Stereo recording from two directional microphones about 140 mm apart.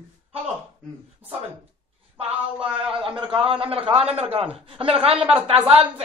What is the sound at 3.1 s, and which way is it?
A man's voice, 40° right (ahead or behind).